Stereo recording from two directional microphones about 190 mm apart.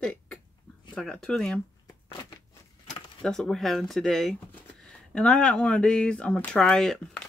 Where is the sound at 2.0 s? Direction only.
30° left (ahead or behind).